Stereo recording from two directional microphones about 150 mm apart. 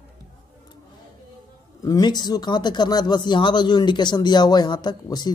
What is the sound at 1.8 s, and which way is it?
Speech, 25° left (ahead or behind).